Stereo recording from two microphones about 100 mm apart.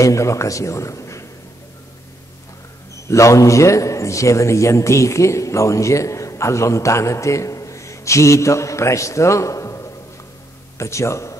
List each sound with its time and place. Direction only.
0.0 s a man's voice: 30° left (ahead or behind)
3.1 s a man's voice: 30° left (ahead or behind)